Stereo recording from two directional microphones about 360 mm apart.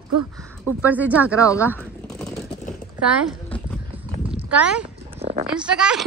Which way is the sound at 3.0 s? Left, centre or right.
Centre.